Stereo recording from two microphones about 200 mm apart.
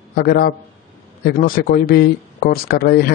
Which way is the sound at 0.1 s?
50° left (ahead or behind).